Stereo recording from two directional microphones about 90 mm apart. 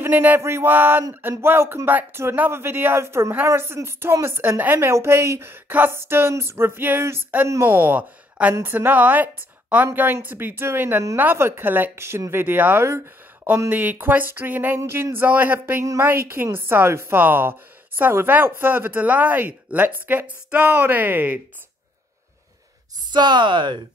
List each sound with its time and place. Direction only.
0.0 s a sound: 20° right (ahead or behind)
0.4 s a woman's voice: 30° right (ahead or behind)
23.0 s speech: 55° right (ahead or behind)